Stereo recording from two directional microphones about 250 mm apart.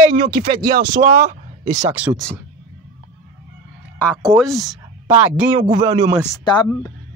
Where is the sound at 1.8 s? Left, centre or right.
Centre.